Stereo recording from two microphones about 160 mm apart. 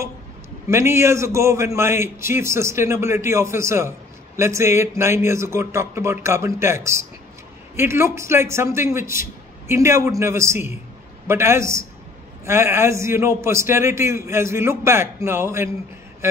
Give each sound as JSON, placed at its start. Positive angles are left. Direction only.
{"t": 0.7, "sound": "a man's voice", "side_deg": -15}